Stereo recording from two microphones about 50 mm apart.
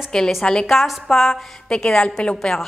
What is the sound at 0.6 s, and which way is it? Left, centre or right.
A woman's voice, centre.